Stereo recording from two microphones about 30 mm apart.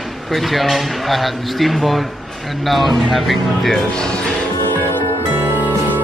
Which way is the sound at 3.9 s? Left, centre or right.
Left.